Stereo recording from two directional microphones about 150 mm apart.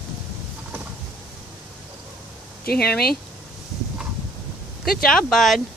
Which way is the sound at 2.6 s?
90° left.